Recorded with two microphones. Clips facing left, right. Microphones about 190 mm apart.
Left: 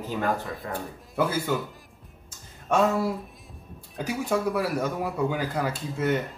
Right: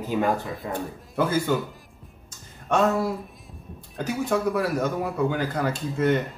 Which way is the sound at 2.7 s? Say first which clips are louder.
Right 1 dB; 10° left (ahead or behind).